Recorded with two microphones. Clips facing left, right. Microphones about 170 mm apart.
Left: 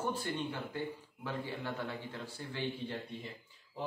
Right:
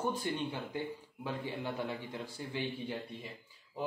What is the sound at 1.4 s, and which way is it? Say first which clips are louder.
A man's voice: right 2 dB; 15° right (ahead or behind).